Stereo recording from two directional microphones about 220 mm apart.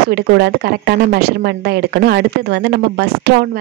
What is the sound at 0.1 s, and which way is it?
Speech, 50° right (ahead or behind).